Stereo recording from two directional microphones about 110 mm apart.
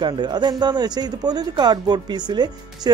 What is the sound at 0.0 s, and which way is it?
Speech, 40° right (ahead or behind).